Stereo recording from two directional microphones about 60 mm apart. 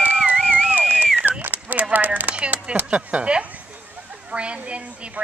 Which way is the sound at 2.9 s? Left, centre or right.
Right.